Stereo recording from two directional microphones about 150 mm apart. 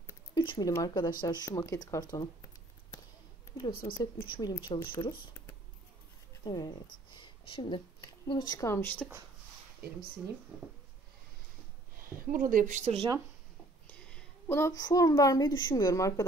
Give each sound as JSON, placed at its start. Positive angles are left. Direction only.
{"t": 0.3, "sound": "speech", "side_deg": 30}
{"t": 3.7, "sound": "a woman's voice", "side_deg": 75}
{"t": 4.0, "sound": "speech", "side_deg": 30}
{"t": 6.4, "sound": "speech", "side_deg": 30}
{"t": 9.8, "sound": "speech", "side_deg": -90}
{"t": 12.3, "sound": "speech", "side_deg": -65}
{"t": 13.8, "sound": "a woman's voice", "side_deg": 15}